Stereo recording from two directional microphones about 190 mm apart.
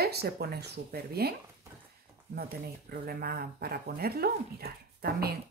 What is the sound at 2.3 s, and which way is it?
Speech, 55° right (ahead or behind).